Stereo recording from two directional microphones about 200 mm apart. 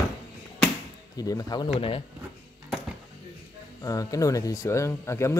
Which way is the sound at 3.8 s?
15° left (ahead or behind).